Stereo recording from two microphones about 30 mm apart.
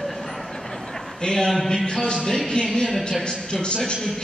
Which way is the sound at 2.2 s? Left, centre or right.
Centre.